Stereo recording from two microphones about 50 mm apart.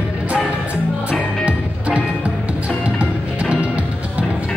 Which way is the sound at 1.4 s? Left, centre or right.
Right.